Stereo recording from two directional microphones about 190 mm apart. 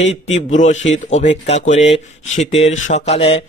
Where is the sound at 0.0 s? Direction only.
35° left (ahead or behind).